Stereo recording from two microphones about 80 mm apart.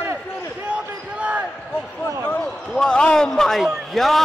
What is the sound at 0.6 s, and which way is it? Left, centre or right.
Speech, centre.